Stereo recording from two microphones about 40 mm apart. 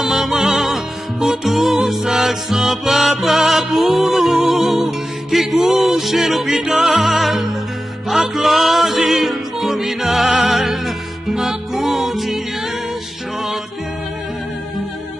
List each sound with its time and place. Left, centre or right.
0.0 s music: centre
4.2 s music: centre
6.5 s music: right
7.0 s music: centre
10.2 s music: centre